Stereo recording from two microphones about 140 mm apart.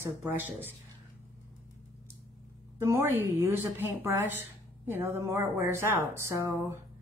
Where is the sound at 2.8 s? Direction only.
15° right (ahead or behind).